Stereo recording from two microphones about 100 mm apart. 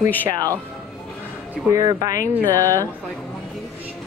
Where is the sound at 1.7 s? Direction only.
35° right (ahead or behind).